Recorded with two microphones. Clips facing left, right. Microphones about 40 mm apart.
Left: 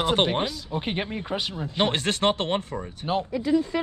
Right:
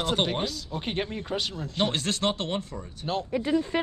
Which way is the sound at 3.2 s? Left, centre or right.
Right.